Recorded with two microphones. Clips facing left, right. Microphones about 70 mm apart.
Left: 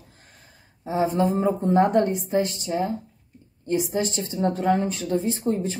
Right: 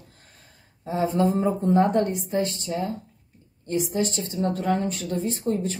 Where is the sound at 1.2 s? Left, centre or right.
Left.